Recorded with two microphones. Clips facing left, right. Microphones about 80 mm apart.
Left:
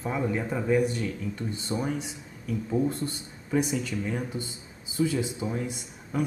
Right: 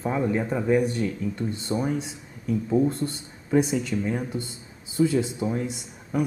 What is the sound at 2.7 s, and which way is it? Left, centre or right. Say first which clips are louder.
Speech: right 4 dB; centre.